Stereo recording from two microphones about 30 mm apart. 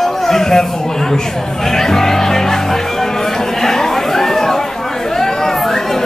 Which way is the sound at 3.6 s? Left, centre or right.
Centre.